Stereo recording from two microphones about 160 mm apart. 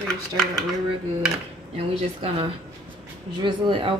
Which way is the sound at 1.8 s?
35° right (ahead or behind).